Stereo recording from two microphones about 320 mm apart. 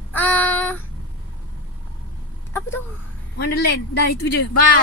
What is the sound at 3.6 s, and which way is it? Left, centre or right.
Speech, left.